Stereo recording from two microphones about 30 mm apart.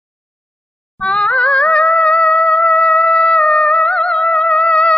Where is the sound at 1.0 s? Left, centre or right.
Left.